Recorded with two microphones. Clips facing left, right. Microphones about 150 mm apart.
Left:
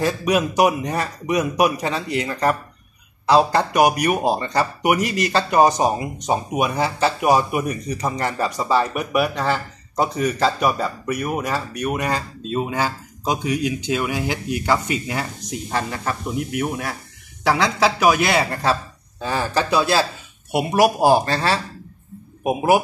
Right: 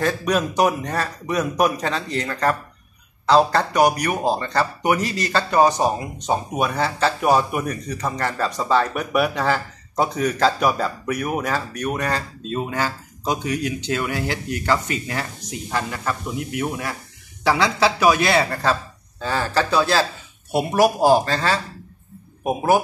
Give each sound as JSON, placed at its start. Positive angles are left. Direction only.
{"t": 0.0, "sound": "speech", "side_deg": 10}
{"t": 17.5, "sound": "speech", "side_deg": 15}
{"t": 21.0, "sound": "a man's voice", "side_deg": 15}